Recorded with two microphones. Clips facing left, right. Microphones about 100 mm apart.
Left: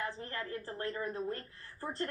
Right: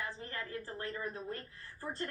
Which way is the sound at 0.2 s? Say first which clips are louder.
Left 2 dB; 35° left (ahead or behind).